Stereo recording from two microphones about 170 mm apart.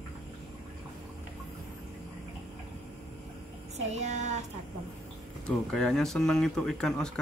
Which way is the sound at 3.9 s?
45° right (ahead or behind).